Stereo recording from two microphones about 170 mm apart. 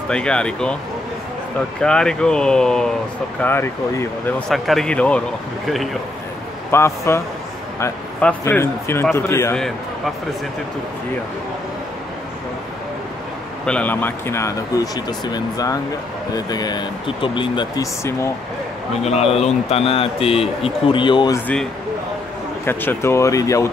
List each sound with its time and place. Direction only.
0.1 s speech: 5° left (ahead or behind)
1.8 s a man's voice: 5° left (ahead or behind)
4.5 s speech: centre (ahead or behind)
6.7 s a man's voice: 15° left (ahead or behind)
13.7 s speech: 10° left (ahead or behind); by 17.8 s 30° left (ahead or behind)
19.0 s a man's voice: 35° left (ahead or behind)
22.7 s a man's voice: 15° left (ahead or behind)